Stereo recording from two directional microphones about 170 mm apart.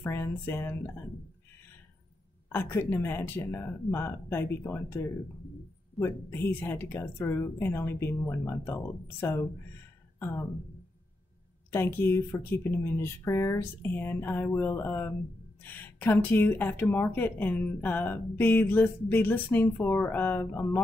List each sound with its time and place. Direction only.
0.0 s speech: 15° left (ahead or behind)
2.5 s speech: 15° left (ahead or behind)
11.7 s speech: 15° left (ahead or behind)